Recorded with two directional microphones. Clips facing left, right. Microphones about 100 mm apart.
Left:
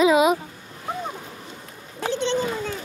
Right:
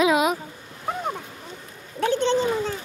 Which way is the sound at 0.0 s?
Centre (ahead or behind).